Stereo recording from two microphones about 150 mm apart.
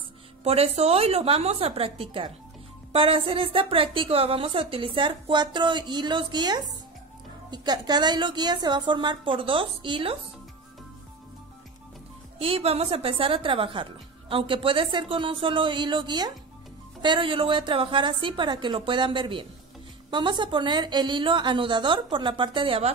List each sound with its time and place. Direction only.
0.4 s a woman's voice: 45° right (ahead or behind)
12.4 s a woman's voice: 40° right (ahead or behind)